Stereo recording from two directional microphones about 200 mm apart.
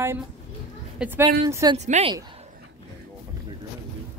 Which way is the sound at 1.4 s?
20° right (ahead or behind).